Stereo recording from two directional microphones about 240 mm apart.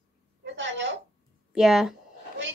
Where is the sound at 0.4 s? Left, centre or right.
Right.